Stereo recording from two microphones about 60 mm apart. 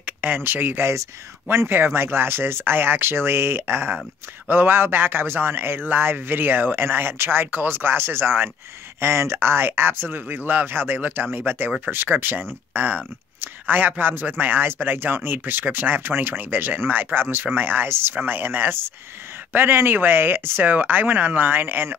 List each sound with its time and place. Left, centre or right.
0.0 s speech: right